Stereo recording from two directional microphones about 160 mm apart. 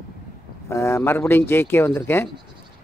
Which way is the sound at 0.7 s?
15° left (ahead or behind).